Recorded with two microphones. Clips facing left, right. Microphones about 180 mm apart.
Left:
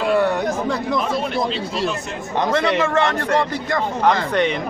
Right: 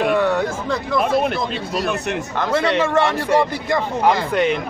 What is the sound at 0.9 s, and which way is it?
Speech, 55° right (ahead or behind).